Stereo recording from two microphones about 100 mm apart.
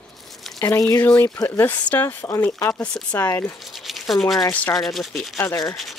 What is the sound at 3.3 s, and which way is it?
Speech, 25° left (ahead or behind).